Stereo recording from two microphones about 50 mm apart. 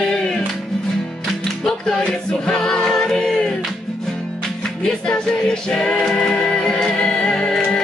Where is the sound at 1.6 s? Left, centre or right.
Centre.